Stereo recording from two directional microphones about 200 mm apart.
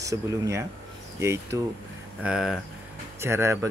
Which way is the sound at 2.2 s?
5° right (ahead or behind).